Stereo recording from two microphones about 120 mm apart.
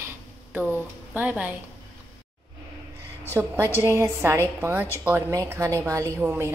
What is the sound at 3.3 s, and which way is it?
A woman's voice, 15° right (ahead or behind).